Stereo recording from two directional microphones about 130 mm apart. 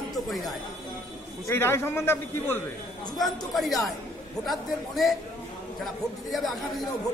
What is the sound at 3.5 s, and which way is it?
Speech, centre (ahead or behind).